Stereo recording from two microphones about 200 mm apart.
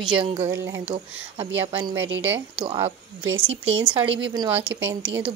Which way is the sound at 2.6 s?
30° right (ahead or behind).